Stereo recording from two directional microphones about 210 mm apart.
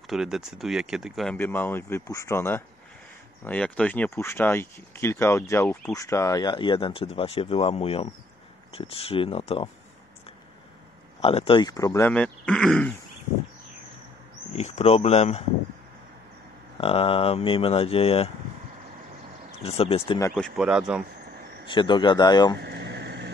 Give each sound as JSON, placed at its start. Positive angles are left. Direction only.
{"t": 0.0, "sound": "speech", "side_deg": 0}
{"t": 11.1, "sound": "speech", "side_deg": 25}
{"t": 14.5, "sound": "speech", "side_deg": 30}
{"t": 16.8, "sound": "speech", "side_deg": 25}
{"t": 19.6, "sound": "speech", "side_deg": 25}
{"t": 20.2, "sound": "speech", "side_deg": 10}
{"t": 20.4, "sound": "speech", "side_deg": -5}
{"t": 21.6, "sound": "speech", "side_deg": 20}
{"t": 22.6, "sound": "a sound", "side_deg": -50}